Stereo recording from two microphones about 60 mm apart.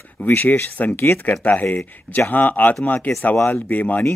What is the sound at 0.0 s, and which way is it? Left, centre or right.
Speech, left.